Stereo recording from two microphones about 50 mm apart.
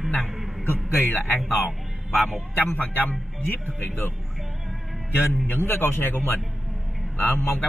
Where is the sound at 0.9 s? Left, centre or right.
Left.